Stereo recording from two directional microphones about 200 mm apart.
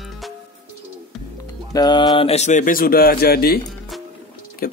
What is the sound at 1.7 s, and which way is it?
Speech, 20° left (ahead or behind).